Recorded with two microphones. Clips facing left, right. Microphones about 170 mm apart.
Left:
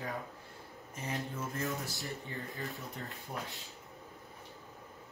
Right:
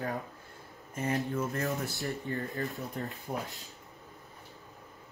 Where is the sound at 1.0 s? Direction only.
55° right (ahead or behind).